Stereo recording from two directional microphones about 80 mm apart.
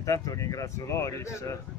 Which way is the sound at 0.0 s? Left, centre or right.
Left.